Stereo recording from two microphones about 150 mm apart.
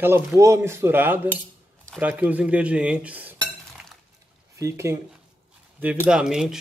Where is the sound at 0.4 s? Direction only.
20° right (ahead or behind).